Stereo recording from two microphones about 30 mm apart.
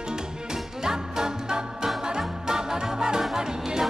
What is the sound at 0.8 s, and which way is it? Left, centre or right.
Music, right.